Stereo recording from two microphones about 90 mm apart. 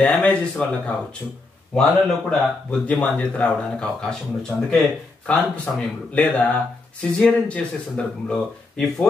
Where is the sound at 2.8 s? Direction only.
15° left (ahead or behind).